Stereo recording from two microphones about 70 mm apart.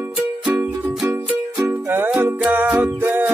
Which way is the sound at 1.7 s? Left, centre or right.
Right.